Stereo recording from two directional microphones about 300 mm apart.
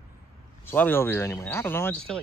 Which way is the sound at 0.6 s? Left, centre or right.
Centre.